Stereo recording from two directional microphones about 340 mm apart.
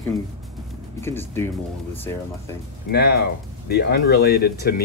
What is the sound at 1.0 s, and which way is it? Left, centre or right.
Speech, centre.